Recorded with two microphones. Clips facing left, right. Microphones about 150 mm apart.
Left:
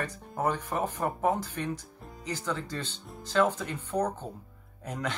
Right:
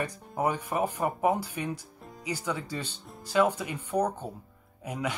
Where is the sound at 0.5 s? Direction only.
10° right (ahead or behind).